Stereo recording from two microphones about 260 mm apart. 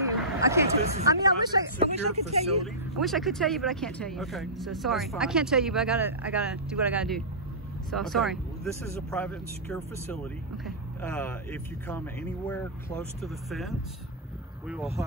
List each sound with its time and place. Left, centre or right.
0.0 s a sound: centre
1.0 s speech: centre
2.6 s speech: centre